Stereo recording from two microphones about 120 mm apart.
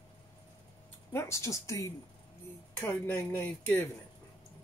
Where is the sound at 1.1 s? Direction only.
25° left (ahead or behind).